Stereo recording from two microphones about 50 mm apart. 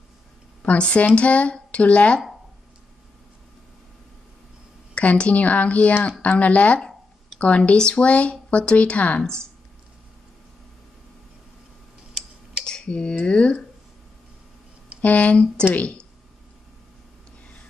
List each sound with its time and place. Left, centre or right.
0.6 s speech: left
4.9 s speech: left
9.2 s speech: centre
12.6 s computer keyboard: centre
13.2 s speech: left
15.0 s speech: left
15.7 s speech: left